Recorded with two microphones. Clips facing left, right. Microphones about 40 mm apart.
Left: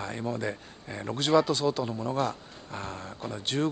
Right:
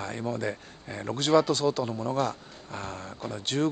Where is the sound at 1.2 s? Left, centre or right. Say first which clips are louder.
Right 1 dB; centre.